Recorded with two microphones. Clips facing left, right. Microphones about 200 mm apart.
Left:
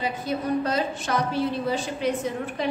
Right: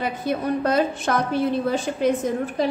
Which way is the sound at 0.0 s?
55° right (ahead or behind).